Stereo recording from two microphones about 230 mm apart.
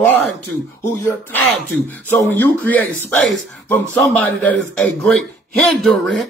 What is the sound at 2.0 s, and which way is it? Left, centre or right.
Speech, centre.